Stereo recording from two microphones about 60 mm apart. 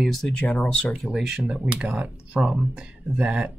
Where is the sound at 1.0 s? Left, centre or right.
Centre.